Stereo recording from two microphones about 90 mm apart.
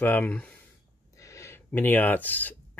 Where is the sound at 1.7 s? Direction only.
20° left (ahead or behind).